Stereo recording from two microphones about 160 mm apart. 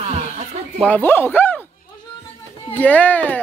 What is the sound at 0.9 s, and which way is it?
Speech, 15° left (ahead or behind).